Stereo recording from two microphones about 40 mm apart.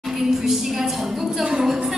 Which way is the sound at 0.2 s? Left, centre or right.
Centre.